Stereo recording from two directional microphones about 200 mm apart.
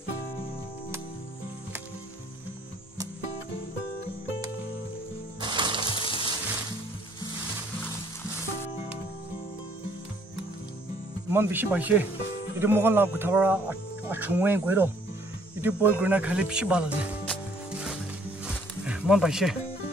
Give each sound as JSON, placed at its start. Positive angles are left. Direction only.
{"t": 5.4, "sound": "music", "side_deg": -20}
{"t": 5.9, "sound": "music", "side_deg": 25}
{"t": 11.2, "sound": "speech", "side_deg": -10}
{"t": 17.2, "sound": "music", "side_deg": 5}
{"t": 18.4, "sound": "wild animals", "side_deg": -5}